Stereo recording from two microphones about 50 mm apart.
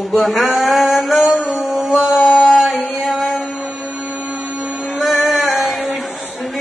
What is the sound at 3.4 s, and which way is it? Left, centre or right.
Music, centre.